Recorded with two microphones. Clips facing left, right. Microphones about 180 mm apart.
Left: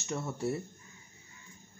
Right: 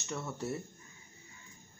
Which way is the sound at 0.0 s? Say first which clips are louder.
Left 3 dB; 15° left (ahead or behind).